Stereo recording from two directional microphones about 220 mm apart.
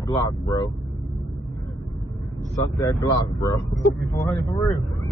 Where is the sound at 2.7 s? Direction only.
15° left (ahead or behind).